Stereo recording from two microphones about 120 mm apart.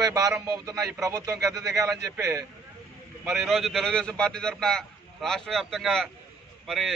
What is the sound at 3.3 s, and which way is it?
A man's voice, centre (ahead or behind).